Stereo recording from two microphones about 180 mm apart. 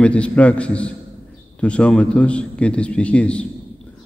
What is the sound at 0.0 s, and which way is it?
A man's voice, 5° left (ahead or behind).